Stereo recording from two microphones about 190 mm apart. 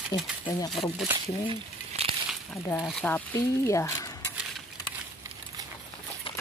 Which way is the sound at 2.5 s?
10° left (ahead or behind).